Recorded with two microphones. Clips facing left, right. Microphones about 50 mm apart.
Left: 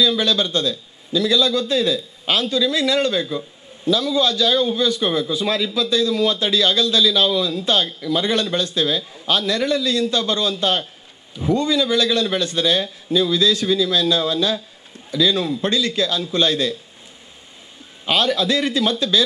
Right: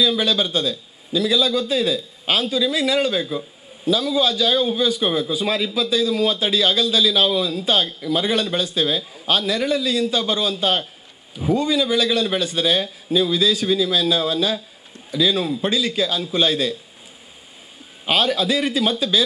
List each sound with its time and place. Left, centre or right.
0.0 s a man's voice: centre
18.0 s a man's voice: centre